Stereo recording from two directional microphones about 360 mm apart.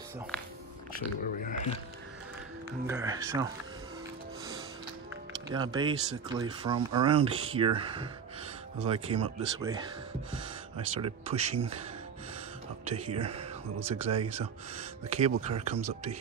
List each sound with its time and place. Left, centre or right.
0.9 s speech: left
2.9 s speech: centre
5.5 s speech: centre
11.0 s speech: centre
12.8 s speech: centre